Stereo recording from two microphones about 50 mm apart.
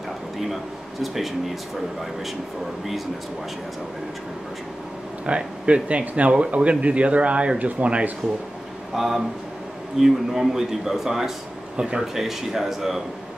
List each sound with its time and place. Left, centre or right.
1.0 s speech: centre
5.2 s speech: right
8.9 s speech: centre
11.7 s speech: right
12.2 s speech: centre